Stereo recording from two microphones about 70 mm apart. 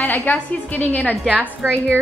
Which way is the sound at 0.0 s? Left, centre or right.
Left.